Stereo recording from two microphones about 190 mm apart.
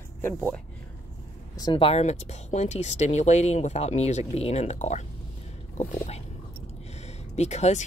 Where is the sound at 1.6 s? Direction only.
25° left (ahead or behind).